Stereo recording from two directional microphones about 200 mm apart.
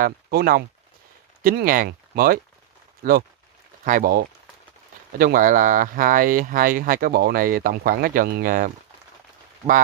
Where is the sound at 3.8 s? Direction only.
45° right (ahead or behind).